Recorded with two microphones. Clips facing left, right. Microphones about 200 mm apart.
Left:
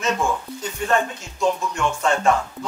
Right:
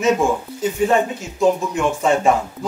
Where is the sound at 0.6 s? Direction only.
10° right (ahead or behind).